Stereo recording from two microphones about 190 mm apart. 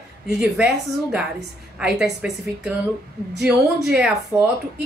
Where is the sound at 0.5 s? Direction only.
5° right (ahead or behind).